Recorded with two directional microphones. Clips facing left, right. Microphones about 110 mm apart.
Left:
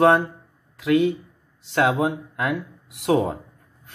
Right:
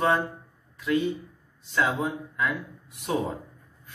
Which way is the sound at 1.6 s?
75° left (ahead or behind).